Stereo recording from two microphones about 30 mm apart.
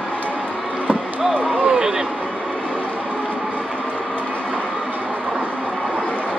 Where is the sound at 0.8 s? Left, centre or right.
Right.